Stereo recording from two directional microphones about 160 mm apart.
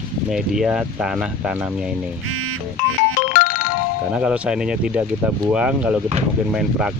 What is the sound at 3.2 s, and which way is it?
Music, 60° left (ahead or behind).